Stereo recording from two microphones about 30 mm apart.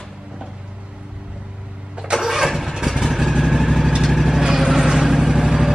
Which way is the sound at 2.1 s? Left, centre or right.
Centre.